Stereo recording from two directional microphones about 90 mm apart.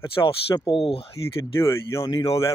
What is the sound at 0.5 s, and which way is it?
Speech, 70° left (ahead or behind).